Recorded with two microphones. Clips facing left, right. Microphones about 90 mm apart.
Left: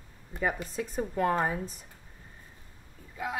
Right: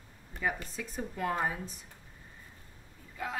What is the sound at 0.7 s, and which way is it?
Speech, 45° left (ahead or behind).